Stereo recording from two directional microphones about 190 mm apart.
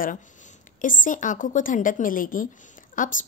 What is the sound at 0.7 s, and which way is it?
A woman's voice, 45° left (ahead or behind).